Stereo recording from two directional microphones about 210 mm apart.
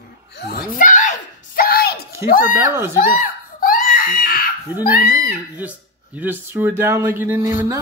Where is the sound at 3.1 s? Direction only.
40° left (ahead or behind).